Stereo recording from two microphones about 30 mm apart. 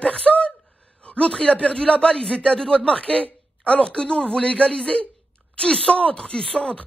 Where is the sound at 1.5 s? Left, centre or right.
Left.